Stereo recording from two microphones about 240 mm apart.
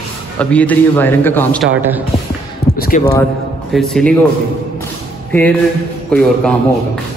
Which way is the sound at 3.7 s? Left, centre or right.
Centre.